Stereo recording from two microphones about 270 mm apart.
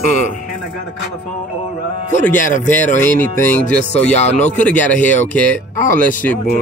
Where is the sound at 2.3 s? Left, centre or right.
Left.